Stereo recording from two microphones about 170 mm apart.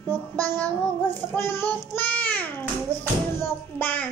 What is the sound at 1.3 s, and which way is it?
Child singing, 15° left (ahead or behind).